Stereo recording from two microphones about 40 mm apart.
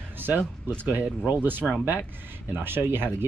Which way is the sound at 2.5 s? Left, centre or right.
Right.